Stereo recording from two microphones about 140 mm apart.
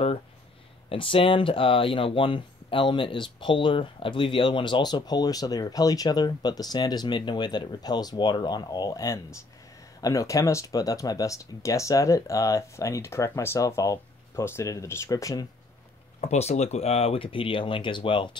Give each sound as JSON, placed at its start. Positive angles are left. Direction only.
{"t": 0.8, "sound": "speech", "side_deg": 40}
{"t": 16.2, "sound": "speech", "side_deg": 50}